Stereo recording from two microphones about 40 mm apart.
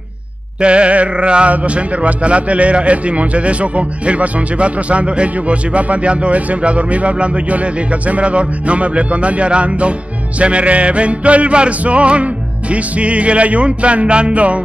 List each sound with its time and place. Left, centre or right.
0.6 s speech: right